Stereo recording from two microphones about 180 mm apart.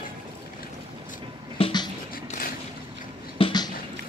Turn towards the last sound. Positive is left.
turn(degrees=25)  # may be behind; listen again after turning